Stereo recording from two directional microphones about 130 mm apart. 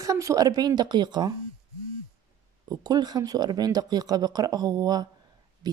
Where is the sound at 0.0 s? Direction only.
25° right (ahead or behind).